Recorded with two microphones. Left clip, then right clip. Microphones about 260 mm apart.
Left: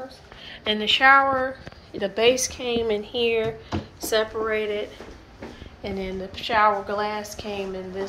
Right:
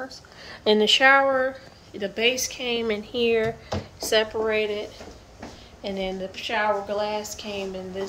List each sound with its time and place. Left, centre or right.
0.7 s speech: right
2.0 s a woman's voice: centre